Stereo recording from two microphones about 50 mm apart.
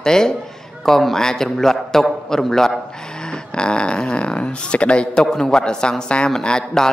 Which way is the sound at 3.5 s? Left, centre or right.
Centre.